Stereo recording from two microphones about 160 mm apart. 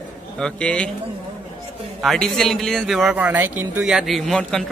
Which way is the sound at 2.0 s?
Centre (ahead or behind).